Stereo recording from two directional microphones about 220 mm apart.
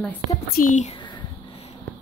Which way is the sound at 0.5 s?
35° left (ahead or behind).